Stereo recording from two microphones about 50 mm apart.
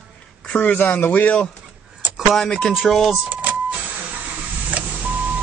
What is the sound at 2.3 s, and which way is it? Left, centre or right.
Speech, centre.